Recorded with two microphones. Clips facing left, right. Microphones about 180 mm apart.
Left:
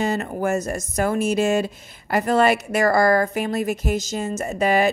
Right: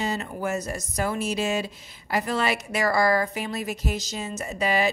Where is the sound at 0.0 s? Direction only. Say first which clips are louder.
Left 6 dB; 50° left (ahead or behind).